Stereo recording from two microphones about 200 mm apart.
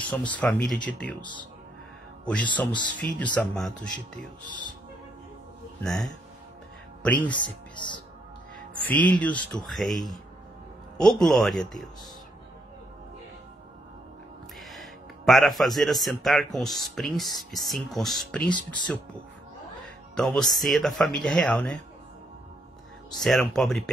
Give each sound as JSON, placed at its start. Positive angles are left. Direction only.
{"t": 0.0, "sound": "speech", "side_deg": 5}
{"t": 5.8, "sound": "speech", "side_deg": 0}
{"t": 7.7, "sound": "speech", "side_deg": 25}
{"t": 8.8, "sound": "speech", "side_deg": 5}
{"t": 14.6, "sound": "a man's voice", "side_deg": 0}
{"t": 20.2, "sound": "speech", "side_deg": 0}
{"t": 23.1, "sound": "speech", "side_deg": 0}